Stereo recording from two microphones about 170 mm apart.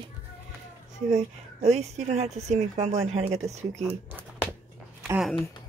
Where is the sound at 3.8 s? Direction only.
10° right (ahead or behind).